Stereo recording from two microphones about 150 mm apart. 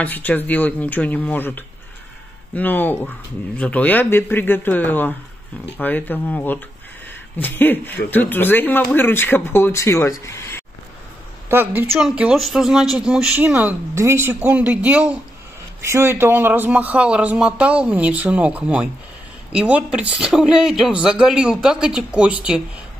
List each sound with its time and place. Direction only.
0.0 s speech: 10° left (ahead or behind)
11.4 s speech: 15° right (ahead or behind)